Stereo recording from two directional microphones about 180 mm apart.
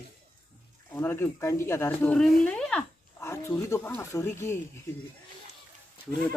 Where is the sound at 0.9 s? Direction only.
15° left (ahead or behind).